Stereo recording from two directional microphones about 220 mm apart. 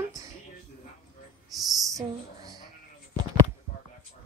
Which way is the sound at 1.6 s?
15° right (ahead or behind).